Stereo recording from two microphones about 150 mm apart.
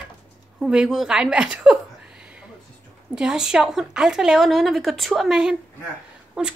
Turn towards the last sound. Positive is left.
turn(degrees=-5)  # may be behind; listen again after turning